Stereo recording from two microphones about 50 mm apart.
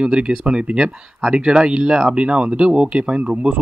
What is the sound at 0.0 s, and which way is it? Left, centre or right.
Speech, centre.